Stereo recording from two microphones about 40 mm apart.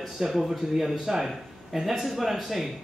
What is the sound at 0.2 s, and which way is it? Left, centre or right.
Speech, centre.